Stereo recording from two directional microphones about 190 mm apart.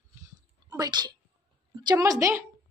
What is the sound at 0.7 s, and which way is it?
A woman's voice, 20° right (ahead or behind).